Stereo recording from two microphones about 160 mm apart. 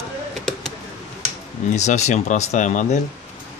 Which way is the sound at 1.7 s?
45° left (ahead or behind).